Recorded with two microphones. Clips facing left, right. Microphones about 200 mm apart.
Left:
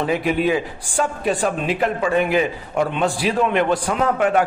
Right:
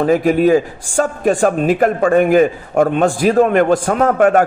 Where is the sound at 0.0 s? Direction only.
45° right (ahead or behind).